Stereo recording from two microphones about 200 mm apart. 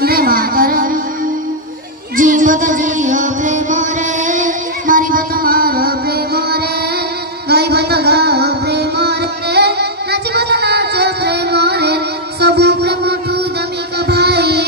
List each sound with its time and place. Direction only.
0.0 s music: 50° right (ahead or behind)
2.1 s music: 40° right (ahead or behind)